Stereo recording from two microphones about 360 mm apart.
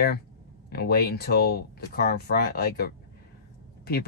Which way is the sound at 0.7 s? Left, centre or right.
Left.